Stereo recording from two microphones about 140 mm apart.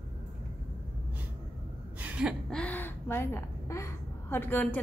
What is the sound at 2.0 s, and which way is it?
Gasp, 10° right (ahead or behind).